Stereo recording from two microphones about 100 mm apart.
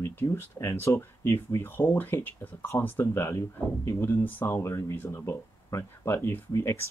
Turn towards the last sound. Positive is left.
turn(degrees=25)  # may be behind; listen again after turning